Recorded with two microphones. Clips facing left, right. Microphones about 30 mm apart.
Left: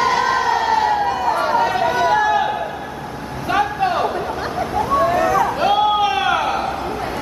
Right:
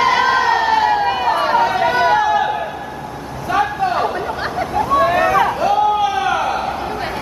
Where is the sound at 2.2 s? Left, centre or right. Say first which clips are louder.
Right 1 dB; centre.